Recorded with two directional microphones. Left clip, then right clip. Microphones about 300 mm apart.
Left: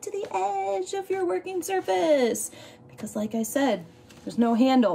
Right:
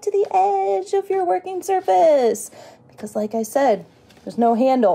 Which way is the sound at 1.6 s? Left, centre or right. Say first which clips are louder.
Right 10 dB; centre.